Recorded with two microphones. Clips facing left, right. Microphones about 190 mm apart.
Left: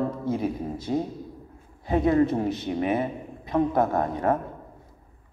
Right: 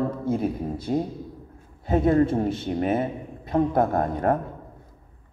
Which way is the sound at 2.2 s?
30° right (ahead or behind).